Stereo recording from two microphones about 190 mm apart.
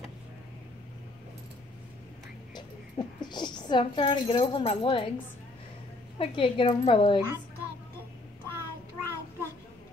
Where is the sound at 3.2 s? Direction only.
25° left (ahead or behind).